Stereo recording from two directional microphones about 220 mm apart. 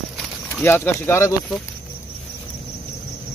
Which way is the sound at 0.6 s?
10° left (ahead or behind).